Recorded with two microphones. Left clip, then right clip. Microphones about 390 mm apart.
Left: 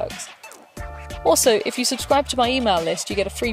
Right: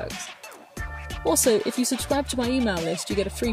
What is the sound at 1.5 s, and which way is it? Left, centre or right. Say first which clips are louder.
Speech: left 3 dB; left.